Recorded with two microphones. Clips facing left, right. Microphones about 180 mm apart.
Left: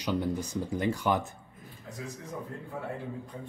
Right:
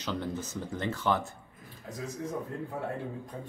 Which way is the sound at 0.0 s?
15° left (ahead or behind).